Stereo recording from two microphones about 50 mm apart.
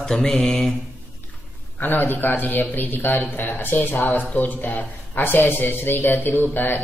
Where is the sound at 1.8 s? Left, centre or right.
Left.